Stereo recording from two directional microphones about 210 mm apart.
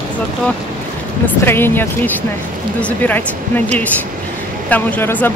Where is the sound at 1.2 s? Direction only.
10° left (ahead or behind).